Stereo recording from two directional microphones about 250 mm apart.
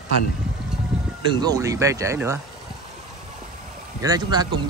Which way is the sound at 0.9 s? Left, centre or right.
Centre.